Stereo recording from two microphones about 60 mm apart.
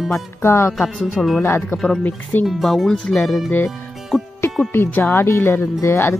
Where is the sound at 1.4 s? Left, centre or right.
Left.